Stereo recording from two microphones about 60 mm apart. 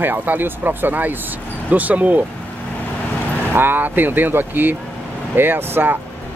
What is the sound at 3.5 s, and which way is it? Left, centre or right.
Speech, right.